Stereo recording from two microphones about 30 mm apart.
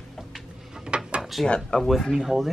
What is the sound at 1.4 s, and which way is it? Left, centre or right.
Speech, left.